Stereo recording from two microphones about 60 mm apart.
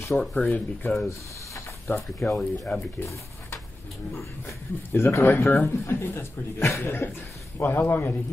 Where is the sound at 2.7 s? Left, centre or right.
Left.